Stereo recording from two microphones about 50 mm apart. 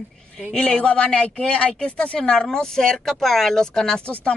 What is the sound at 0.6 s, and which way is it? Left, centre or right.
Speech, centre.